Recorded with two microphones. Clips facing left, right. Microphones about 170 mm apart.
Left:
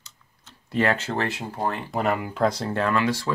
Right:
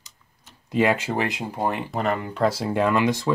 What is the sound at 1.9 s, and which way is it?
Speech, 5° left (ahead or behind).